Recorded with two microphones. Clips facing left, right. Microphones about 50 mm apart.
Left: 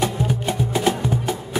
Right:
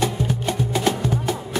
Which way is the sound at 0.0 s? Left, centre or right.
Centre.